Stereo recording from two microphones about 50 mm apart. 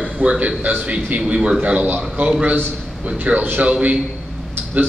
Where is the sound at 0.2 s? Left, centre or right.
Right.